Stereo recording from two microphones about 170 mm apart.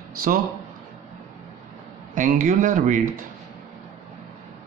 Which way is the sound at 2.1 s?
50° right (ahead or behind).